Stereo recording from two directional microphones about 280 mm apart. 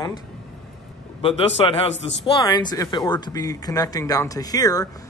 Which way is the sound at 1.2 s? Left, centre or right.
Left.